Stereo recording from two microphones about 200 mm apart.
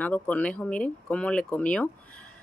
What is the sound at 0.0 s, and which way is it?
Speech, 5° left (ahead or behind).